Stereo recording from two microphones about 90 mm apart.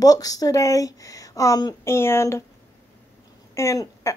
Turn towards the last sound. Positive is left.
turn(degrees=35)  # may be behind; listen again after turning